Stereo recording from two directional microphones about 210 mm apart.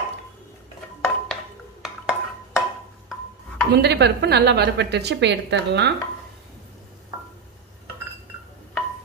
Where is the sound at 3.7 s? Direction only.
50° right (ahead or behind).